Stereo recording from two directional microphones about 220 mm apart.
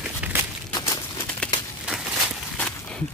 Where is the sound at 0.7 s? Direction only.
15° left (ahead or behind).